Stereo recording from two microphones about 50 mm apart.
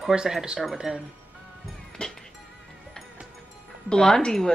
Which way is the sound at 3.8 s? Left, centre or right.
Centre.